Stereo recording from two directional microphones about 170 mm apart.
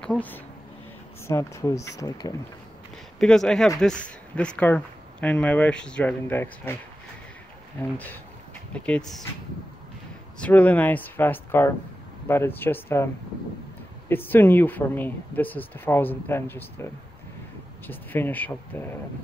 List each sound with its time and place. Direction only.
0.0 s speech: 10° left (ahead or behind)
3.2 s speech: 5° left (ahead or behind)
8.7 s speech: 5° left (ahead or behind)
10.4 s speech: 10° left (ahead or behind)
17.8 s speech: 10° left (ahead or behind)